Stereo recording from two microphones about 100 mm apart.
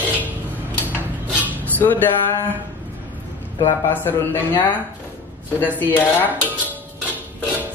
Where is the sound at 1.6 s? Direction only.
20° left (ahead or behind).